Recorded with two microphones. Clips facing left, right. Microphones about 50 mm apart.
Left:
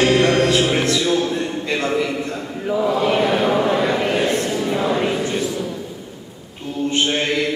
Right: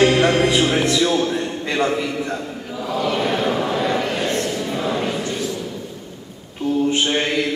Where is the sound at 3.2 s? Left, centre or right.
Centre.